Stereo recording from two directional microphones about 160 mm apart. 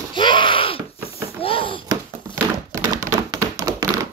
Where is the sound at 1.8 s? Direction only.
20° right (ahead or behind).